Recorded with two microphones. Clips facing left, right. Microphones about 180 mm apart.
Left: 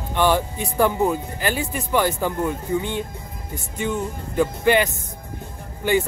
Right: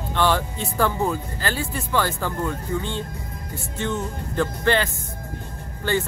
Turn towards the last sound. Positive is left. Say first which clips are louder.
# left 4 dB
turn(degrees=15)  # may be behind; listen again after turning